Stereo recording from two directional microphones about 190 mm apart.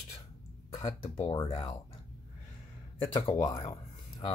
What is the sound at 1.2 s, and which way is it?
Speech, 30° left (ahead or behind).